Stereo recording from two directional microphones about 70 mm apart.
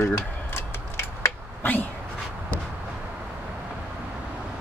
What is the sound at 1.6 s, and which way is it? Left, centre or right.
Cat, left.